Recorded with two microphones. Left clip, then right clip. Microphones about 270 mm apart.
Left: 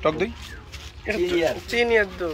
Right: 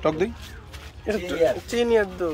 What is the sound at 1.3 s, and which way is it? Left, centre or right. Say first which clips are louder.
Speech: right 3 dB; right.